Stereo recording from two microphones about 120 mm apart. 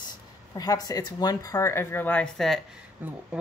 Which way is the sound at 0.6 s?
30° left (ahead or behind).